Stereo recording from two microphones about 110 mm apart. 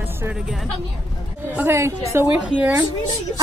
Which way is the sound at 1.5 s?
20° right (ahead or behind).